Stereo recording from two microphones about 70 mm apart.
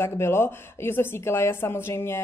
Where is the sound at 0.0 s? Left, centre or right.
Left.